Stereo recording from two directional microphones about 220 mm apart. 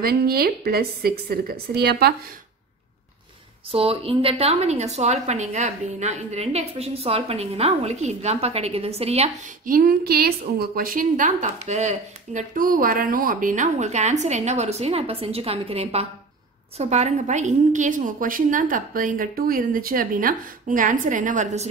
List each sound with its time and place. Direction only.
0.0 s speech: 45° right (ahead or behind)
3.7 s a woman's voice: 25° right (ahead or behind)